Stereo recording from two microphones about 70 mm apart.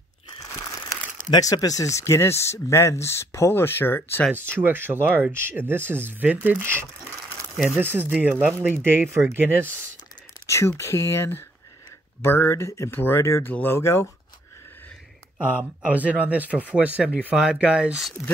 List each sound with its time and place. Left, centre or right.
0.4 s crumpling: left
1.4 s speech: left
4.6 s speech: right
5.0 s speech: centre
5.3 s speech: right
7.5 s speech: centre
7.8 s speech: right
10.4 s speech: left
12.9 s speech: left
13.7 s speech: left
15.3 s speech: centre